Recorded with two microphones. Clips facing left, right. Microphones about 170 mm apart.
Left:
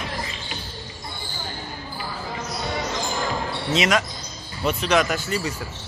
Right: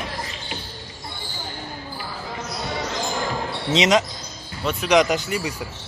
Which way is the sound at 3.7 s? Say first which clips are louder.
Right 4 dB; 20° right (ahead or behind).